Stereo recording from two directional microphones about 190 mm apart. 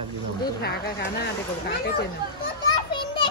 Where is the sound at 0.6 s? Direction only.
60° left (ahead or behind).